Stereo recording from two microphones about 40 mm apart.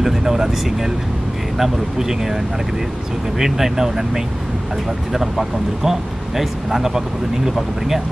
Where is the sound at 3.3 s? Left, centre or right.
Centre.